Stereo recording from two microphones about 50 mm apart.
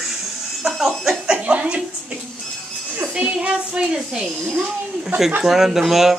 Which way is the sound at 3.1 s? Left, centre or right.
Centre.